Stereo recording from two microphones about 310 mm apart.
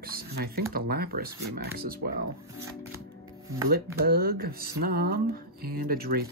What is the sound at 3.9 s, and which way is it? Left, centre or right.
Speech, right.